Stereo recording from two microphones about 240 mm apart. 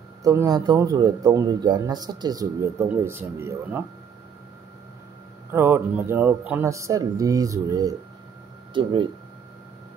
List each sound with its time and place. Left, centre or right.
0.2 s speech: centre
5.5 s speech: centre